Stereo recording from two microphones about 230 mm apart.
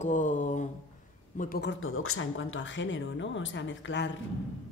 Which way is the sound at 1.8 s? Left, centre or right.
Left.